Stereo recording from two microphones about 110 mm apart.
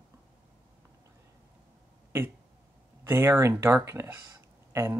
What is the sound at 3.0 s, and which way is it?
Speech, 25° right (ahead or behind).